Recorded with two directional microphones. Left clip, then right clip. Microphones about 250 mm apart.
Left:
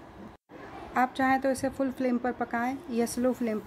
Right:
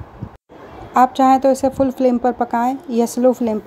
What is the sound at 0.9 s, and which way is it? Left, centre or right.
A woman's voice, centre.